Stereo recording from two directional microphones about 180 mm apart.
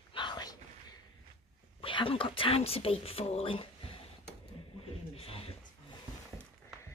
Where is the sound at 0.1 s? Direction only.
25° left (ahead or behind).